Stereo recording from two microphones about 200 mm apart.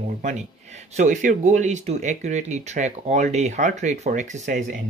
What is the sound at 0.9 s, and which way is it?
Speech, 40° right (ahead or behind).